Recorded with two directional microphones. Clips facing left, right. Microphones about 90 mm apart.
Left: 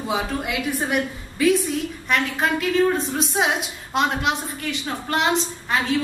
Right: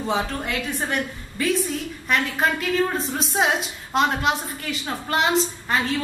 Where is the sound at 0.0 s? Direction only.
5° left (ahead or behind).